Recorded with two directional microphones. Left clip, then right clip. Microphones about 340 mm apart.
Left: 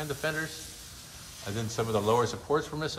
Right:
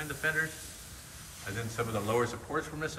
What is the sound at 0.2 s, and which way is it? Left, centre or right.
Speech, centre.